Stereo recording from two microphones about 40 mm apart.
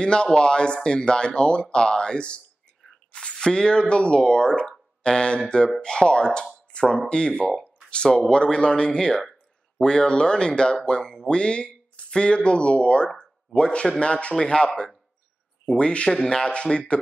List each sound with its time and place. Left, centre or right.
0.0 s speech: left
3.1 s squish: left
3.3 s speech: left